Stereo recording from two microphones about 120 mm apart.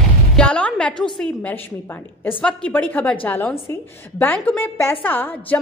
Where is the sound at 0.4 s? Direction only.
10° left (ahead or behind).